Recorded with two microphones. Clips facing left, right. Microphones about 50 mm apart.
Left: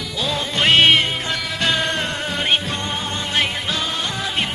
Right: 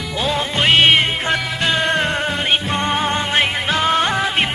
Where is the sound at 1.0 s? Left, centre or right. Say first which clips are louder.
Right 4 dB; right.